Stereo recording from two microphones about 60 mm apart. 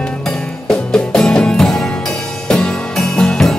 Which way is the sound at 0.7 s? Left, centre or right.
Centre.